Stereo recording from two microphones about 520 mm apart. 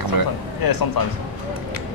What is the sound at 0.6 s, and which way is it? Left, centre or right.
Speech, left.